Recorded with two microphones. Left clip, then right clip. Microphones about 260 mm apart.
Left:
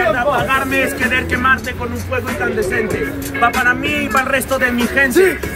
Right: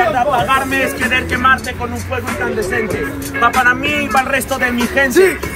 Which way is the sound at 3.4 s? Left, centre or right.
Centre.